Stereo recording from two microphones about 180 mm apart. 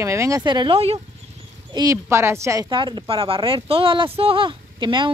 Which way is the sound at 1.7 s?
20° right (ahead or behind).